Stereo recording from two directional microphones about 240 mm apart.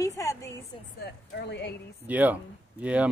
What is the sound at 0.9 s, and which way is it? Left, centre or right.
Speech, left.